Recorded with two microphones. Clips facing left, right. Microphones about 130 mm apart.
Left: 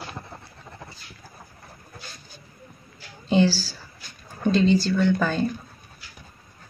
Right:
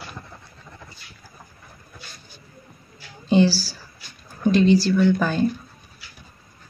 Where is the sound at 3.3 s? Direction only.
10° right (ahead or behind).